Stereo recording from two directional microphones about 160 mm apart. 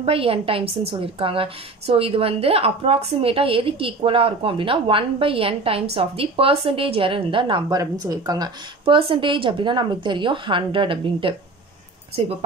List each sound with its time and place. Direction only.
0.0 s a woman's voice: 35° right (ahead or behind)